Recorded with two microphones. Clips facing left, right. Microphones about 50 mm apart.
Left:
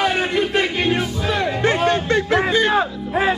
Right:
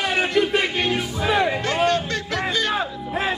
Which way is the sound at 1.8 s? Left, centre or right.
Left.